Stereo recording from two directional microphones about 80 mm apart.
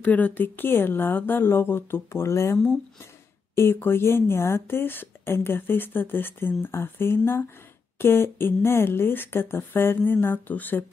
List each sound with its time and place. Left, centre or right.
0.0 s speech: left